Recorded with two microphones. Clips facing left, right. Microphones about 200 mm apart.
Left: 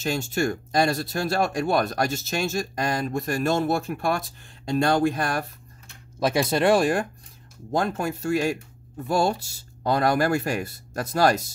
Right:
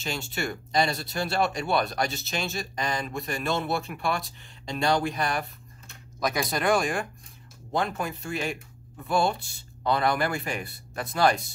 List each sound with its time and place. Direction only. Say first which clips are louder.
0.0 s speech: left 7 dB; 45° left (ahead or behind)
6.1 s speech: left 6 dB; 30° left (ahead or behind); by 11.4 s 45° left (ahead or behind)